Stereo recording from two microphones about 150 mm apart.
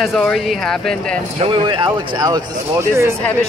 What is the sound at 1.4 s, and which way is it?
Speech, 35° right (ahead or behind).